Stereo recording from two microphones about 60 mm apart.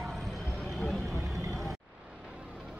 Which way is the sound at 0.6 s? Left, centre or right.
Centre.